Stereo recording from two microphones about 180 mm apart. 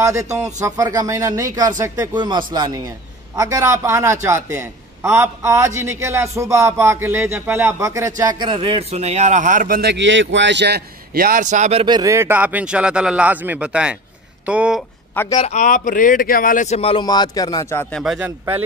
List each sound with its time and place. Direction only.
0.0 s a man's voice: 15° right (ahead or behind); by 11.8 s 40° right (ahead or behind)
11.8 s a man's voice: 20° right (ahead or behind); by 14.8 s 5° right (ahead or behind)
15.3 s speech: 40° left (ahead or behind); by 18.0 s 15° left (ahead or behind)
18.0 s speech: 5° right (ahead or behind)